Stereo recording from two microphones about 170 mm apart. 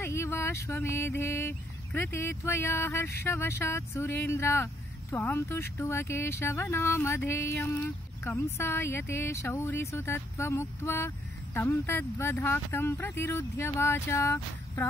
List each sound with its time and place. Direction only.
0.0 s speech: 15° left (ahead or behind)